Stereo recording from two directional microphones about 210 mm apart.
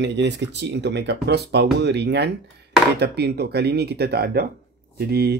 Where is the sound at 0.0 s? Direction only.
55° right (ahead or behind).